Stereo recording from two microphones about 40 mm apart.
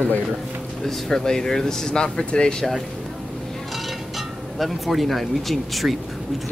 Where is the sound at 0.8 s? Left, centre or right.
Centre; by 2.6 s left.